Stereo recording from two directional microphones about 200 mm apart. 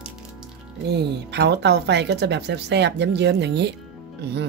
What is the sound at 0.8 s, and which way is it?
Speech, 60° right (ahead or behind).